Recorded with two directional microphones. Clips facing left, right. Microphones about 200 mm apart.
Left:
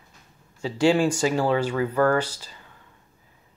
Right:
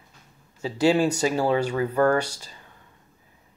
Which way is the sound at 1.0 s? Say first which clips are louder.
Even; 15° right (ahead or behind).